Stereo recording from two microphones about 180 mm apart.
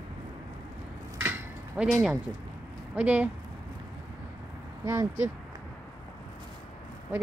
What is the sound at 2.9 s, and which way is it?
Speech, 10° right (ahead or behind).